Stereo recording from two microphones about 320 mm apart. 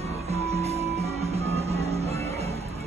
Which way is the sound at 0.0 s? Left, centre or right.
Centre.